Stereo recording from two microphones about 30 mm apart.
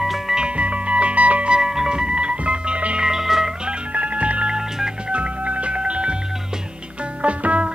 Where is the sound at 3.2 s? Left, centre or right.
Centre.